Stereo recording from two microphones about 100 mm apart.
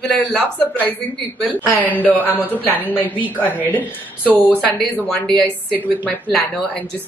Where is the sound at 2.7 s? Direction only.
20° left (ahead or behind).